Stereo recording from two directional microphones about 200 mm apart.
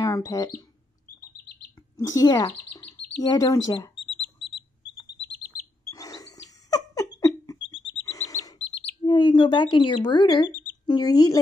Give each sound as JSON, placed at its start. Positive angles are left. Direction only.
{"t": 0.0, "sound": "speech", "side_deg": 15}
{"t": 2.0, "sound": "speech", "side_deg": 15}
{"t": 5.9, "sound": "bird", "side_deg": 15}
{"t": 6.7, "sound": "rodents", "side_deg": 20}
{"t": 8.1, "sound": "chirp", "side_deg": 15}
{"t": 9.0, "sound": "speech", "side_deg": 25}